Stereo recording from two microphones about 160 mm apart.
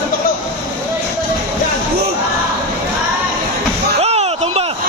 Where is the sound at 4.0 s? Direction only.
40° right (ahead or behind).